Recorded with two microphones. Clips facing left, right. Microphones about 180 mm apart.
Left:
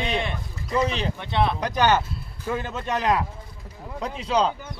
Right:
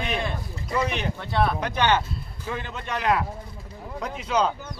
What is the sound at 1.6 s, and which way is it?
A man's voice, 40° left (ahead or behind).